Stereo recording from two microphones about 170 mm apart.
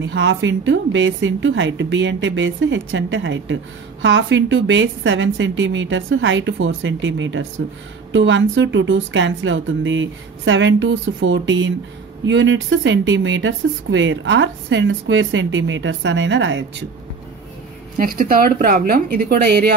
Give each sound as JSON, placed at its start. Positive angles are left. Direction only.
{"t": 0.0, "sound": "speech", "side_deg": -90}
{"t": 17.9, "sound": "a woman's voice", "side_deg": -60}